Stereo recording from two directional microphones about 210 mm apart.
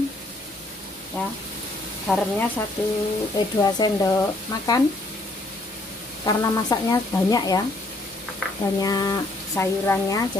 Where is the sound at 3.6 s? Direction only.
15° left (ahead or behind).